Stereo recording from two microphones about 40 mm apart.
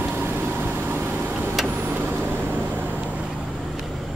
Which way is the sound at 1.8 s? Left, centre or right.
Right.